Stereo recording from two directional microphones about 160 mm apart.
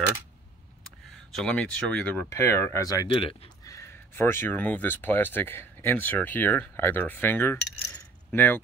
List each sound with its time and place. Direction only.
0.8 s speech: 5° left (ahead or behind); by 3.1 s 20° left (ahead or behind)
3.1 s speech: 35° left (ahead or behind)
3.6 s speech: 20° left (ahead or behind)